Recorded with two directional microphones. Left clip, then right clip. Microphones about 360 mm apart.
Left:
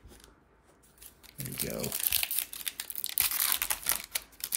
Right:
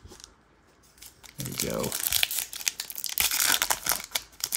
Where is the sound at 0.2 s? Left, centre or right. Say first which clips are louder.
Right 7 dB; centre.